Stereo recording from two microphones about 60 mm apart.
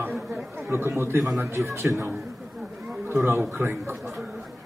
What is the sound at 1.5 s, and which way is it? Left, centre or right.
Speech, right.